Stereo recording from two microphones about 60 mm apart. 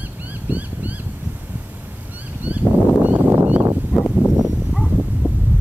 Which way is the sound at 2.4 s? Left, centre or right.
Right.